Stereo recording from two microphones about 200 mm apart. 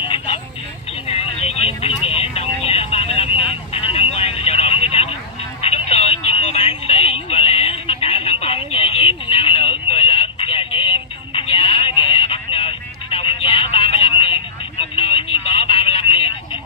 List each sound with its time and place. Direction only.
0.0 s vehicle: 25° left (ahead or behind)
3.4 s telephone: 30° left (ahead or behind)